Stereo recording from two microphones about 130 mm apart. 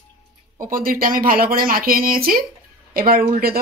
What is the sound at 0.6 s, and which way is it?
Speech, 90° right.